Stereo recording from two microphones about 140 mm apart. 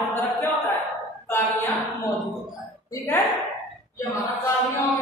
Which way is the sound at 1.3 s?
15° left (ahead or behind).